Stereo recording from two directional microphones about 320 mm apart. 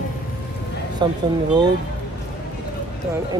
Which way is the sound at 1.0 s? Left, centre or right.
Centre.